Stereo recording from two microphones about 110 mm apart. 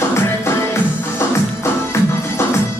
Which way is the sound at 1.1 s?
25° left (ahead or behind).